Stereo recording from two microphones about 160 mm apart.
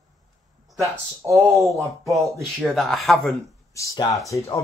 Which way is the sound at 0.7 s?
20° right (ahead or behind).